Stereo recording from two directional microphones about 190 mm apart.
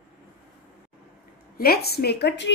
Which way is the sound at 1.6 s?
55° left (ahead or behind).